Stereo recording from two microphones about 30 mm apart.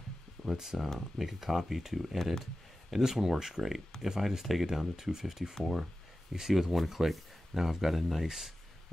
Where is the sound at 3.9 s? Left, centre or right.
Centre.